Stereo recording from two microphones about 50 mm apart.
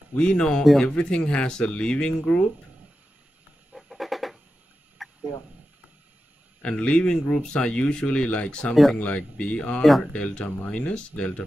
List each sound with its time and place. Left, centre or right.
0.1 s speech: left
3.7 s a sound: centre
6.6 s speech: left